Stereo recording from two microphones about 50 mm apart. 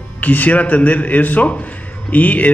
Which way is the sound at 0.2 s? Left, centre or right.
Left.